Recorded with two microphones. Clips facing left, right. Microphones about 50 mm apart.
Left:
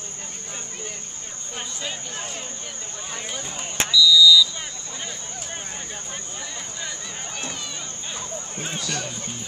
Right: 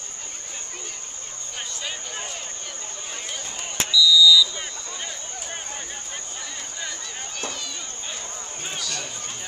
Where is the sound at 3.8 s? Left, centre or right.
Centre.